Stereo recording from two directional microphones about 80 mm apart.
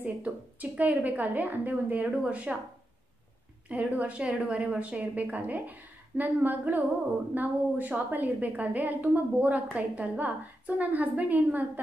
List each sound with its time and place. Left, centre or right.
0.0 s a woman's voice: centre
3.6 s a woman's voice: centre